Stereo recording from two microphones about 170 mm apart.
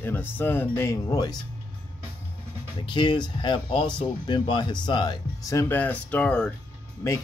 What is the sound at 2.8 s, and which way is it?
Speech, 25° left (ahead or behind).